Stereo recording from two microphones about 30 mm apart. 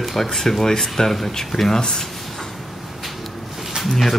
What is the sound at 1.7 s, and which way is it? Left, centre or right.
Speech, left.